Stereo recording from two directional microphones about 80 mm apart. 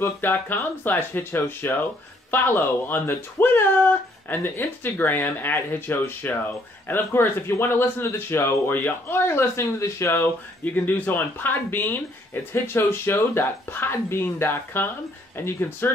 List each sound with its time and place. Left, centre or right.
0.0 s speech: left